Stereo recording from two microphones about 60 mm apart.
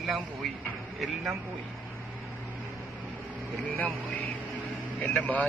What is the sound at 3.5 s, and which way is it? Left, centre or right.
Speech, left.